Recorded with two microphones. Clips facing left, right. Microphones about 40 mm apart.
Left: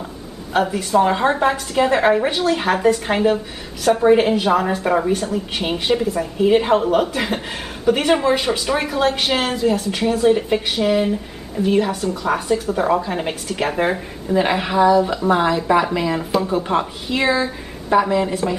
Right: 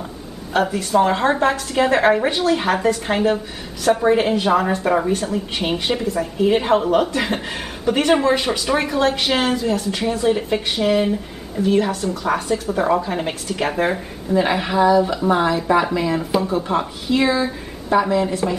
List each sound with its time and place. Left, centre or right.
0.7 s a woman's voice: centre